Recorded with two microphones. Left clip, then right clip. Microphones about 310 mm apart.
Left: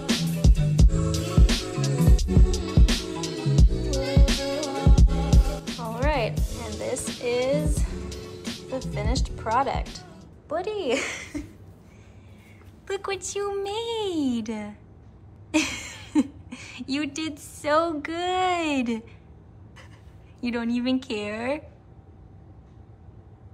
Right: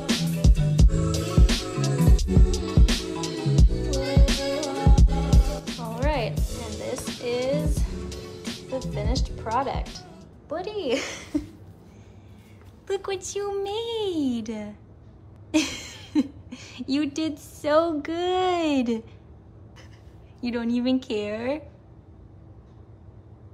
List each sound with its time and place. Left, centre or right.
0.0 s music: centre
12.8 s a woman's voice: centre
20.3 s a woman's voice: centre